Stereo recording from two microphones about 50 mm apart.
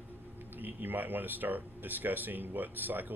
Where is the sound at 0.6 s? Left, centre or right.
Right.